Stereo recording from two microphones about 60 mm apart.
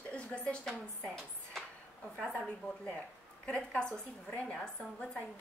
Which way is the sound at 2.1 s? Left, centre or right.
Centre.